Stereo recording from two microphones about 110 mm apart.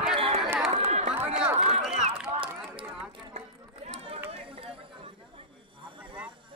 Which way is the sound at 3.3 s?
70° right (ahead or behind).